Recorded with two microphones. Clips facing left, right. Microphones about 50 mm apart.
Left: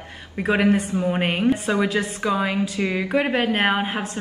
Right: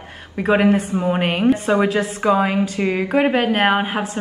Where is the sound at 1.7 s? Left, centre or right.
Right.